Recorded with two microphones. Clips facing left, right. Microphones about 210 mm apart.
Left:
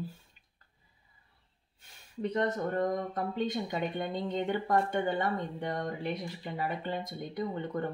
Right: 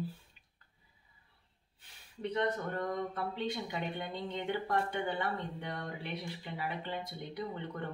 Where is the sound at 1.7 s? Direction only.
45° left (ahead or behind).